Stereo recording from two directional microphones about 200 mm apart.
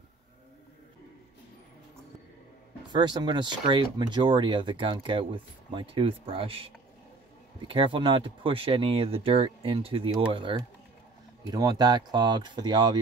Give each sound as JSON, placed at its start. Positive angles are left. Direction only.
{"t": 2.9, "sound": "speech", "side_deg": -20}
{"t": 11.5, "sound": "speech", "side_deg": -20}